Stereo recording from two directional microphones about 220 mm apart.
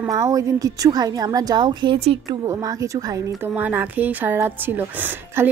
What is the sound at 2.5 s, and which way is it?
Speech, 15° right (ahead or behind).